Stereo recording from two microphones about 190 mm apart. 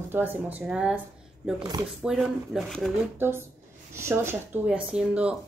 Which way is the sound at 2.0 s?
Centre (ahead or behind).